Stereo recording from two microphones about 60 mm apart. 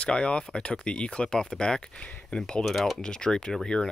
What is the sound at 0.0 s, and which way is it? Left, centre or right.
Speech, centre.